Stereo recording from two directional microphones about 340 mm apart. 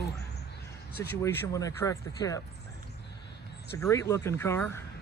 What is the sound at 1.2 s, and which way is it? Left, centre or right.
Speech, centre.